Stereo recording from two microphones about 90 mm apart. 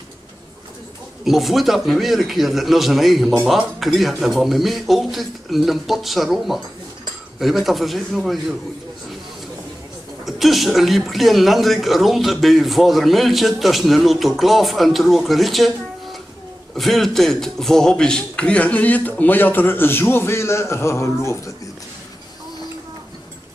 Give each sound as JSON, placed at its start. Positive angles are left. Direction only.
{"t": 1.2, "sound": "speech", "side_deg": 0}
{"t": 10.2, "sound": "a man's voice", "side_deg": 0}